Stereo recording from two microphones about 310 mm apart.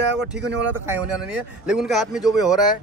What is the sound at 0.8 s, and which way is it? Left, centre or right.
Speech, centre.